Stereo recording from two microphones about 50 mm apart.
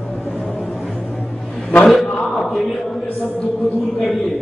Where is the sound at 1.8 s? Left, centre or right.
Centre.